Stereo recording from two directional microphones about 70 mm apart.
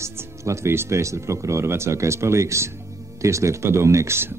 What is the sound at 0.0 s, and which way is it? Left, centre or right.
Speech, right.